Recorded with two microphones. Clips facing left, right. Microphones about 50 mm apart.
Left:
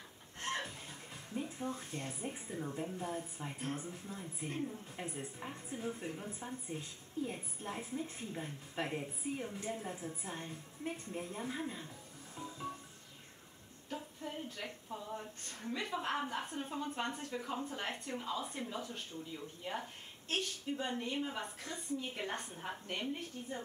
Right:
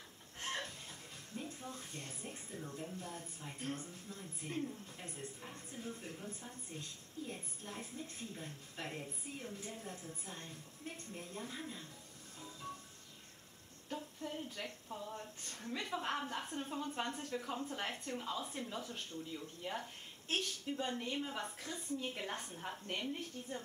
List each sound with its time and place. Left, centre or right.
0.4 s chicken: centre
1.3 s music: left
1.7 s speech: centre
2.3 s a woman's voice: left
12.4 s music: centre
13.8 s a sound: centre
15.8 s a woman's voice: centre